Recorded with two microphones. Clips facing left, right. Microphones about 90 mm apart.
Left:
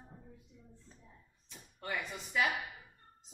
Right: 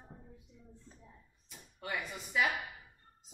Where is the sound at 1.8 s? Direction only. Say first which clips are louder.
Even; 5° right (ahead or behind).